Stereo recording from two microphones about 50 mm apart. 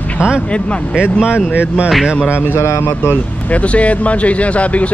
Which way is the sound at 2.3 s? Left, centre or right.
Left.